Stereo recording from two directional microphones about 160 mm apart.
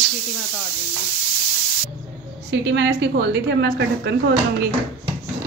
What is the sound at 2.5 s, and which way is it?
A woman's voice, 90° right.